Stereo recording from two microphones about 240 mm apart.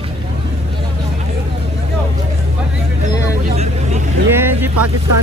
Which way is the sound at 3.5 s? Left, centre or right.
Right.